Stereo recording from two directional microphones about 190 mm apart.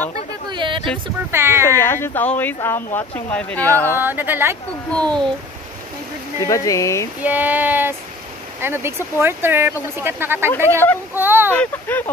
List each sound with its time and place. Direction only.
0.5 s a sound: 25° right (ahead or behind)
1.3 s speech: 15° right (ahead or behind)
1.7 s speech: 15° left (ahead or behind)
4.0 s speech: 10° right (ahead or behind)
4.9 s a child's voice: 5° left (ahead or behind)
6.4 s speech: 15° left (ahead or behind)
7.2 s speech: 10° right (ahead or behind)
11.5 s speech: 5° left (ahead or behind)